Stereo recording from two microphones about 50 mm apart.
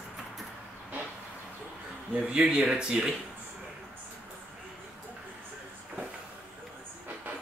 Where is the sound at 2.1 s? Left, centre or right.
Centre.